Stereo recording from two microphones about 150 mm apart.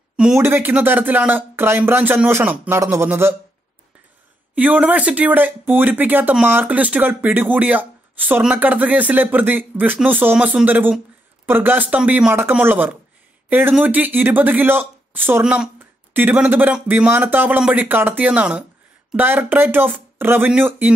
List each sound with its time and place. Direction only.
0.4 s speech: 15° right (ahead or behind)
4.6 s speech: 10° right (ahead or behind)